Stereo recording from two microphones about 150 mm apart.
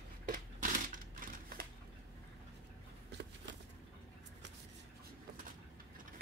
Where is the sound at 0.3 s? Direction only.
65° right (ahead or behind).